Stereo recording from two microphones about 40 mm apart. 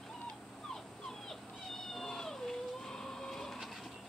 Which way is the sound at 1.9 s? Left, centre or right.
Centre.